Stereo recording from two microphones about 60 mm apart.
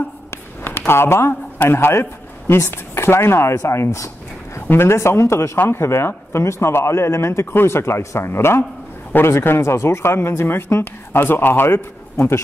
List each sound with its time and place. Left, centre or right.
0.3 s a man's voice: left
4.6 s speech: left
5.6 s speech: left
8.3 s speech: left